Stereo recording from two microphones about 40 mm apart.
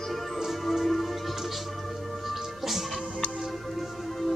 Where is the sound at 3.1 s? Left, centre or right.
Left.